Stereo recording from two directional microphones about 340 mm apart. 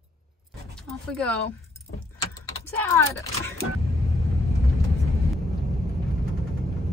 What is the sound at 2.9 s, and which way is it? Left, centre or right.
Speech, centre.